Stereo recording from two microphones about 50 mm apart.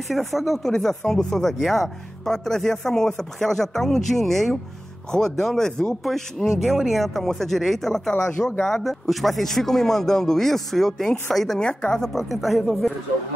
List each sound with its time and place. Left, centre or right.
0.1 s speech: centre